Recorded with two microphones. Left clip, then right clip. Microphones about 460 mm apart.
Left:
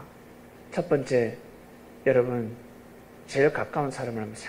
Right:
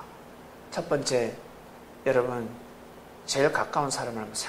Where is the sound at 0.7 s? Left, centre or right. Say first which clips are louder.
Left 2 dB; right.